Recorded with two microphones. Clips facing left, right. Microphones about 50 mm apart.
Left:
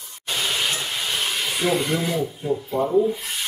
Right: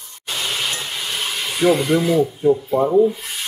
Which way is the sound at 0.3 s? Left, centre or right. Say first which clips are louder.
Even; centre.